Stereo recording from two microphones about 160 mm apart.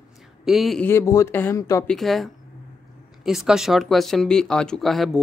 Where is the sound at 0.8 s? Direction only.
20° left (ahead or behind).